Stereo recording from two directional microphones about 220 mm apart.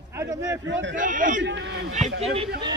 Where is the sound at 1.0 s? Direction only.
35° right (ahead or behind).